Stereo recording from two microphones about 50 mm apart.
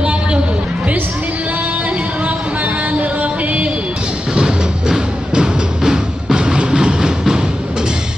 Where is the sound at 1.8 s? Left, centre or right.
Right.